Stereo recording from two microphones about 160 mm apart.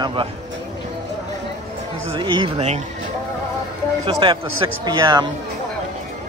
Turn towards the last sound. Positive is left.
turn(degrees=-25)  # may be behind; listen again after turning